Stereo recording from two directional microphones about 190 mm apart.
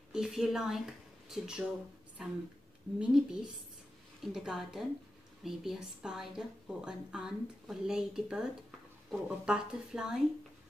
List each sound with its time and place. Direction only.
0.1 s a woman's voice: centre (ahead or behind)